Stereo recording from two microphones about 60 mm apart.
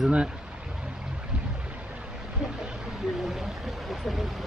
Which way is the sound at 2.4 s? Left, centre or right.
Centre.